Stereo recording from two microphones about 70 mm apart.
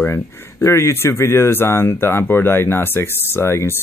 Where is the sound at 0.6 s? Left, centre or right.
Left.